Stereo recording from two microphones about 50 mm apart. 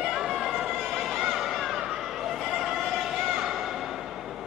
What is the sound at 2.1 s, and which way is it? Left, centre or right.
Neigh, centre.